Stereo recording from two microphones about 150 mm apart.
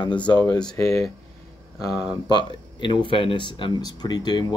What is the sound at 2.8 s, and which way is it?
Speech, 30° left (ahead or behind).